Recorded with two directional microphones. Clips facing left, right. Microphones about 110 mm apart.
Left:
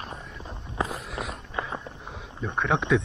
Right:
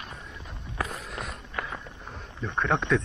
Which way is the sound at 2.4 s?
5° left (ahead or behind).